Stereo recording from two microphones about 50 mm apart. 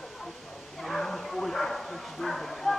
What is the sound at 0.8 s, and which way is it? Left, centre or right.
Bow-wow, centre.